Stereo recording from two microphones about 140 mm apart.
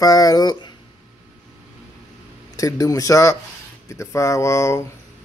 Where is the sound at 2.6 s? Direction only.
25° left (ahead or behind).